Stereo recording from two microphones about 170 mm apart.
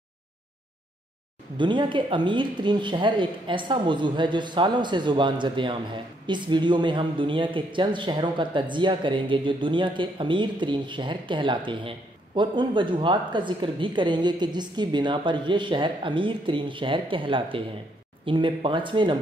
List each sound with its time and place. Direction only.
1.6 s speech: 30° right (ahead or behind)